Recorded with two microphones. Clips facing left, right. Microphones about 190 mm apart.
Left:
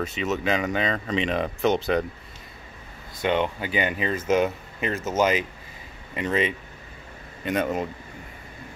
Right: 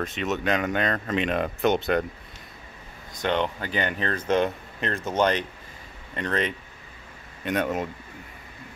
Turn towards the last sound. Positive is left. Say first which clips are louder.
# left 1 dB
turn(degrees=0)  # may be behind; listen again after turning